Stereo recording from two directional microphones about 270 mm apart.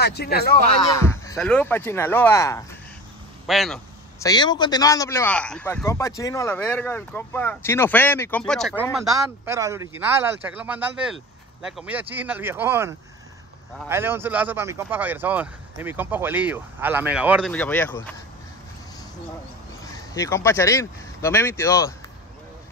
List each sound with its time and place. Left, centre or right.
0.0 s speech: left
0.9 s a man's voice: centre
3.4 s a man's voice: centre
4.2 s a man's voice: centre
9.5 s speech: centre
19.8 s speech: centre